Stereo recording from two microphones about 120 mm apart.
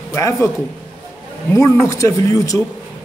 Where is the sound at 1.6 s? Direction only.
25° left (ahead or behind).